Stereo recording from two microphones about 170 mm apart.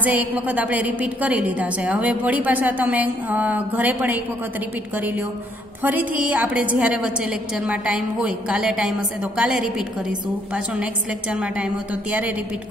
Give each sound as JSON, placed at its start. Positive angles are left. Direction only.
{"t": 0.0, "sound": "a woman's voice", "side_deg": -10}